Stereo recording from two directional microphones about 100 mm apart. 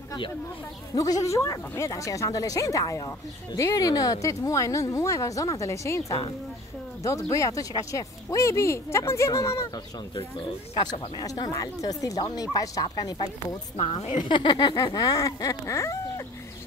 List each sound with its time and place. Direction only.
0.9 s speech: 35° left (ahead or behind)
10.8 s speech: 45° left (ahead or behind)
13.7 s speech: 60° left (ahead or behind); by 16.0 s 30° left (ahead or behind)